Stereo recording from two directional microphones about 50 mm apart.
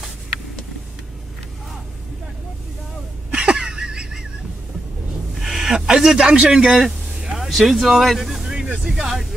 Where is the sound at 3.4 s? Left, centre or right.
Centre.